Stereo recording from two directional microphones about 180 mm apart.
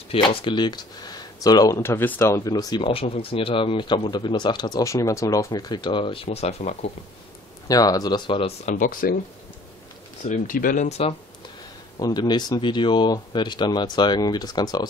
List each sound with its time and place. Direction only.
0.1 s speech: 30° left (ahead or behind)
7.6 s speech: 20° left (ahead or behind)
8.7 s speech: 50° left (ahead or behind)
10.2 s speech: 45° left (ahead or behind)
12.0 s speech: 20° left (ahead or behind)